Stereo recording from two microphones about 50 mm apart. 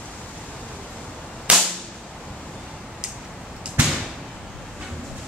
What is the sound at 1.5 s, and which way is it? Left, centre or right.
Whip, centre.